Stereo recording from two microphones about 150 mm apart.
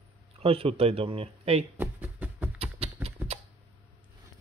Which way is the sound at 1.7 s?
10° right (ahead or behind).